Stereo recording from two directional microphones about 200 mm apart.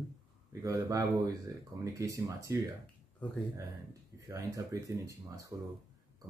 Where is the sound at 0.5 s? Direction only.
15° right (ahead or behind).